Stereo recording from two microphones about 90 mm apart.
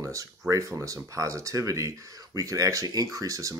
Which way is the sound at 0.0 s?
35° right (ahead or behind).